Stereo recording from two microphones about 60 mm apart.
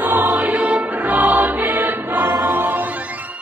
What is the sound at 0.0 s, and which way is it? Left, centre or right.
Music, right.